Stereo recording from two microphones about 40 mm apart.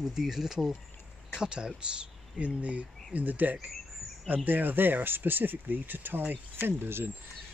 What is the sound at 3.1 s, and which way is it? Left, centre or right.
Speech, right.